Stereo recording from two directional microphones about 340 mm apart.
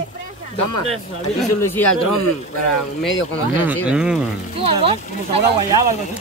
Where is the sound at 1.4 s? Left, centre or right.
Centre.